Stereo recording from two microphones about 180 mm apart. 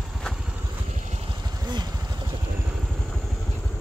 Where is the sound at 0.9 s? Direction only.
40° right (ahead or behind); by 2.4 s 25° right (ahead or behind).